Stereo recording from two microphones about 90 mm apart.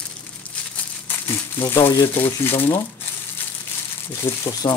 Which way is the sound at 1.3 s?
30° left (ahead or behind).